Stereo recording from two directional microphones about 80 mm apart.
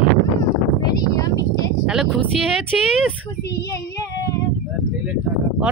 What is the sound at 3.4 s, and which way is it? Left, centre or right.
Child singing, left.